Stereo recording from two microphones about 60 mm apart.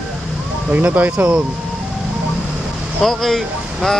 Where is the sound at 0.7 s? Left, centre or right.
Right.